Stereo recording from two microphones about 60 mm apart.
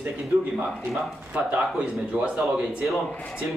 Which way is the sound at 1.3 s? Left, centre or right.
Right.